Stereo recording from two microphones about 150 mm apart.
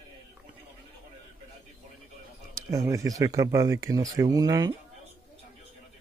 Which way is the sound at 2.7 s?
20° right (ahead or behind).